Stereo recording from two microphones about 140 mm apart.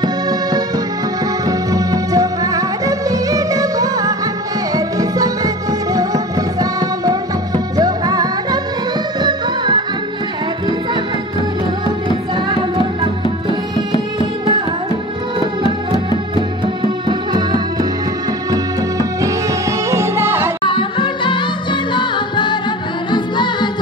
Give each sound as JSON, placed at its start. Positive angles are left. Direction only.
{"t": 0.0, "sound": "music", "side_deg": -30}
{"t": 17.1, "sound": "music", "side_deg": -30}
{"t": 20.6, "sound": "music", "side_deg": 35}